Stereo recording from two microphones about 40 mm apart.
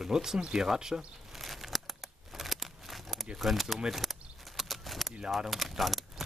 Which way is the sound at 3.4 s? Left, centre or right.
Centre.